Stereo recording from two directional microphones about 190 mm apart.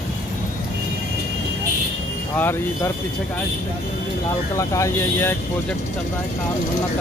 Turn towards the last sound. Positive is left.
turn(degrees=15)  # may be behind; listen again after turning